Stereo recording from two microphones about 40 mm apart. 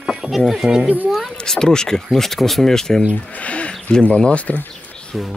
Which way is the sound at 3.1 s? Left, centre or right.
Left.